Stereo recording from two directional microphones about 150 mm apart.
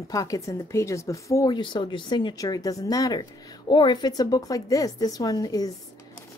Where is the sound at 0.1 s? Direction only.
25° left (ahead or behind).